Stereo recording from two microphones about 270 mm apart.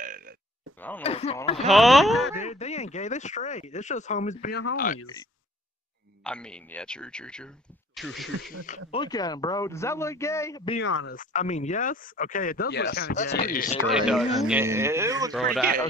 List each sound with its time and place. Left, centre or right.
0.0 s grunt: right
0.7 s a man's voice: centre
1.0 s speech: left
1.7 s speech: centre
2.4 s speech: left
6.2 s speech: centre
8.5 s speech: left
9.0 s a man's voice: centre
10.8 s speech: left
11.1 s speech: left
14.0 s speech: centre
15.6 s a man's voice: right